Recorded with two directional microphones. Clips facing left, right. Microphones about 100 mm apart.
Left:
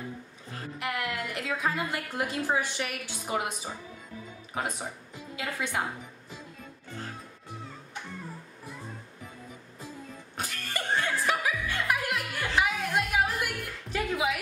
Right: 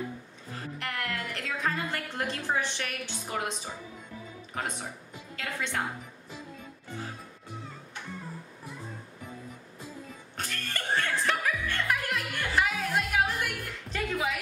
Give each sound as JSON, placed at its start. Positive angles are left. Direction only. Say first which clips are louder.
{"t": 0.7, "sound": "a woman's voice", "louder": "left 3 dB", "side_deg": 10}
{"t": 10.3, "sound": "music", "louder": "left 1 dB", "side_deg": 10}